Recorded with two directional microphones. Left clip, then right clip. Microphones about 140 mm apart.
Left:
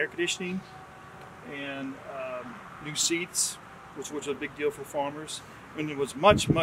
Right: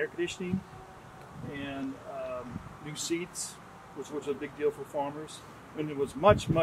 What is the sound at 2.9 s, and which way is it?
Speech, 15° left (ahead or behind).